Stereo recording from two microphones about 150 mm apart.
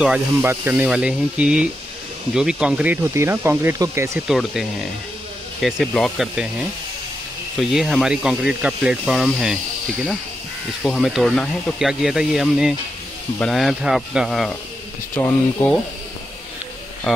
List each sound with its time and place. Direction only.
0.0 s speech: 10° right (ahead or behind)
4.3 s speech: centre (ahead or behind)
7.5 s speech: centre (ahead or behind)
10.8 s speech: 5° left (ahead or behind)
15.1 s speech: 10° left (ahead or behind)